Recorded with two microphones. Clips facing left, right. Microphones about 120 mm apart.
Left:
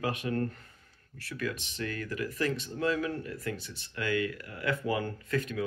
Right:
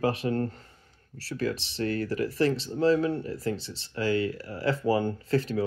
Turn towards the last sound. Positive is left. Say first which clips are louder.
# right 5 dB
turn(degrees=-30)  # may be behind; listen again after turning